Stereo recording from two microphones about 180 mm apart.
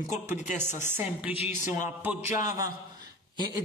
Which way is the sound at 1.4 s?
40° left (ahead or behind).